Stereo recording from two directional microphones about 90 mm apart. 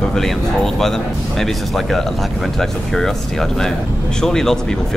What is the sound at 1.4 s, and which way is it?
Speech, 5° left (ahead or behind).